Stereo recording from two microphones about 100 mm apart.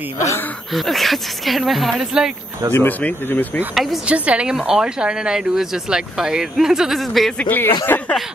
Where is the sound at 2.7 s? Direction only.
15° left (ahead or behind).